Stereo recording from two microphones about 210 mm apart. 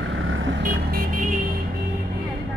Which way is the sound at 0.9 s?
40° right (ahead or behind).